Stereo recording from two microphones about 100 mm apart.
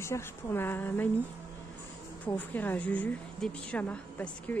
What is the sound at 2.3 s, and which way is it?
A woman's voice, 20° left (ahead or behind).